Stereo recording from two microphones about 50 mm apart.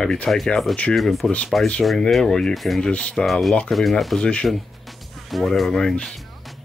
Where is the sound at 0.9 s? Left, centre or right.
Centre.